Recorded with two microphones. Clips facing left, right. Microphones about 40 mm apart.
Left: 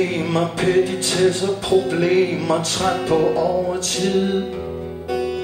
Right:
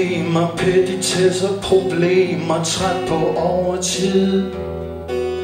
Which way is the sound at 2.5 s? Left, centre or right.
Centre.